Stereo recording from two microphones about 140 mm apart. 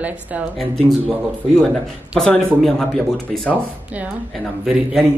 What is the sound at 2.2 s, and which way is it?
A man's voice, 10° left (ahead or behind).